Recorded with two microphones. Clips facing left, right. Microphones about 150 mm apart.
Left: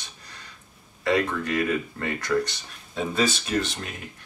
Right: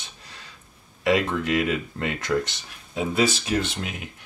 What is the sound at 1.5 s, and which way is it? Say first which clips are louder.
Speech: right 1 dB; 15° right (ahead or behind).